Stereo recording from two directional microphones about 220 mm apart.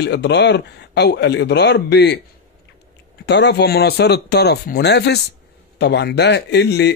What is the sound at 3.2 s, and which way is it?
A man's voice, 50° left (ahead or behind).